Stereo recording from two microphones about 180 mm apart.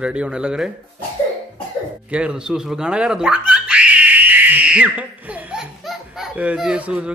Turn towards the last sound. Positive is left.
turn(degrees=-5)  # may be behind; listen again after turning